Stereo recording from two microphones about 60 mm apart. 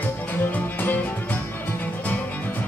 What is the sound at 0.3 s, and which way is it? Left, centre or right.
Music, left.